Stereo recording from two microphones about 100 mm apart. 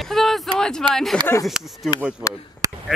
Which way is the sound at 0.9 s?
5° left (ahead or behind).